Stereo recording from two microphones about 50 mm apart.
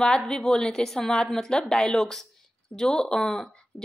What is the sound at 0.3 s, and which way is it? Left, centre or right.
A woman's voice, centre.